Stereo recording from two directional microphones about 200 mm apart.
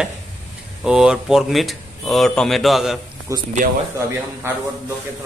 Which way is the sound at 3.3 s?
15° right (ahead or behind).